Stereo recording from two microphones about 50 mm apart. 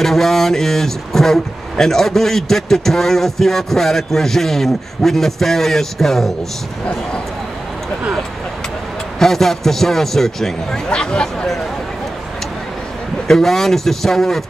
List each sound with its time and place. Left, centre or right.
0.0 s speech: centre
9.2 s speech: centre
10.9 s speech: centre
13.3 s speech: centre